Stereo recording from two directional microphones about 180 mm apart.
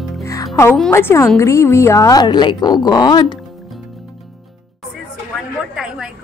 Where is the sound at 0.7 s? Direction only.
10° left (ahead or behind).